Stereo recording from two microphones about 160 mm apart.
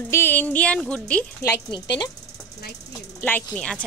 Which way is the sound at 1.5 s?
25° left (ahead or behind).